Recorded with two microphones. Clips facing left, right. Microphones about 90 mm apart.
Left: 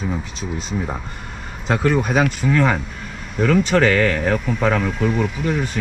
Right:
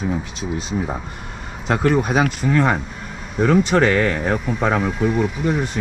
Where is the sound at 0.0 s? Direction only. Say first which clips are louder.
Right 2 dB; centre (ahead or behind).